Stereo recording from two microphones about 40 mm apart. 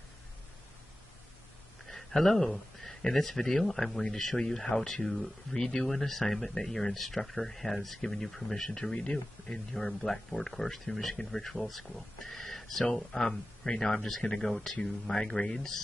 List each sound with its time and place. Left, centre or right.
1.9 s a sound: centre
3.1 s speech: centre
8.9 s speech: centre
9.8 s speech: centre